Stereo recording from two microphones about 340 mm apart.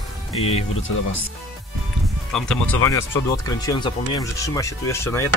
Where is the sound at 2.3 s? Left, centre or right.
Centre.